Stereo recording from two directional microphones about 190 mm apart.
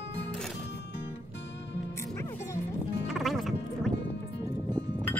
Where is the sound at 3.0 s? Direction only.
Centre (ahead or behind).